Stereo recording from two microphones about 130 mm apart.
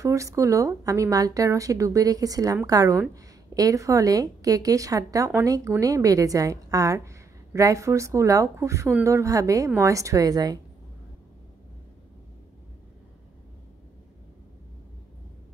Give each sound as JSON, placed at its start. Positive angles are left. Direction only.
{"t": 0.0, "sound": "a woman's voice", "side_deg": -25}